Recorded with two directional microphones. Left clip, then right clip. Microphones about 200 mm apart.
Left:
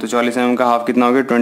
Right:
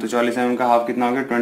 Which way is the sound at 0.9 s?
50° left (ahead or behind).